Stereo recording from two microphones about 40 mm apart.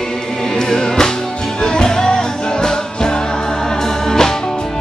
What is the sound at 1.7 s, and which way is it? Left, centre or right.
Music, centre.